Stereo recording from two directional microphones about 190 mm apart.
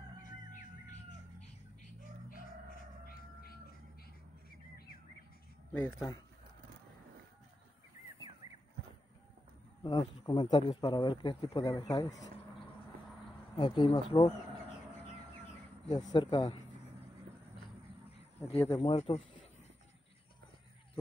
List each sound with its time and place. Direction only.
5.7 s speech: 5° left (ahead or behind)
9.8 s speech: 20° left (ahead or behind)
13.6 s speech: 25° left (ahead or behind)
15.9 s speech: 20° left (ahead or behind)
18.6 s speech: 15° left (ahead or behind)
18.9 s speech: 30° left (ahead or behind)